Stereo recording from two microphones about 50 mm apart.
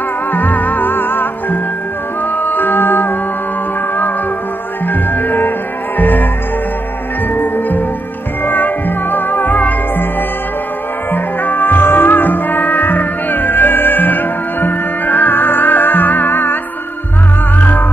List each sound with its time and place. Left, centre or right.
0.3 s music: left
4.8 s music: left
7.3 s music: left
11.1 s music: left
17.6 s music: left